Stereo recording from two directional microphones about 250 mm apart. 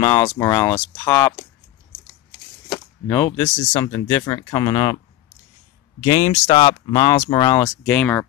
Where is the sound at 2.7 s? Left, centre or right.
Centre.